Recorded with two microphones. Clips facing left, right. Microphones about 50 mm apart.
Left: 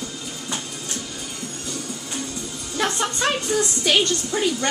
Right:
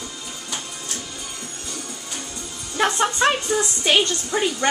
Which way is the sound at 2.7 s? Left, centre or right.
Centre.